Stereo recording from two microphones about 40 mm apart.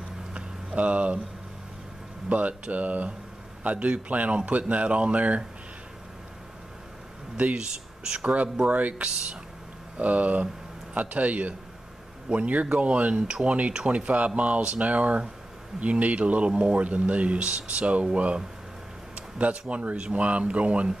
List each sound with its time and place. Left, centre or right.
0.3 s a sound: right
0.7 s speech: right
2.2 s speech: right
7.5 s speech: right
13.1 s speech: right
19.1 s a sound: right
19.7 s speech: right